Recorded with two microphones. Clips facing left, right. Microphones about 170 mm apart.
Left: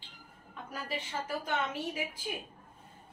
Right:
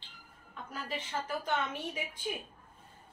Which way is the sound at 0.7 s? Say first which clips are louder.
Even; 10° left (ahead or behind).